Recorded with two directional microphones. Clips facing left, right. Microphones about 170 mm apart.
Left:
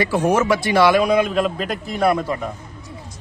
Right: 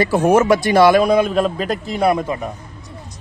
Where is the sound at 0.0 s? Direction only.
45° right (ahead or behind).